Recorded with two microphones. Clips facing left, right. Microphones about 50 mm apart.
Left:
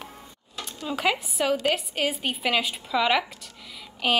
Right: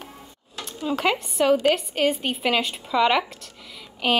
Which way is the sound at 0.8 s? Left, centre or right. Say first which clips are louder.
Right 3 dB; centre.